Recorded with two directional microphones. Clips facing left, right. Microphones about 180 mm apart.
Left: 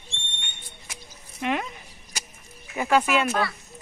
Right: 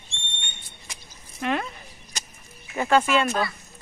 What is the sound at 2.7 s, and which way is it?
Speech, 10° left (ahead or behind).